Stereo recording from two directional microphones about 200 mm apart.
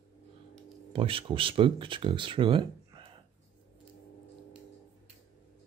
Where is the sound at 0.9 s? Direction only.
25° right (ahead or behind).